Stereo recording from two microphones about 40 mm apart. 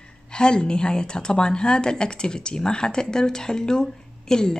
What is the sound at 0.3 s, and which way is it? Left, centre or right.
A woman's voice, left.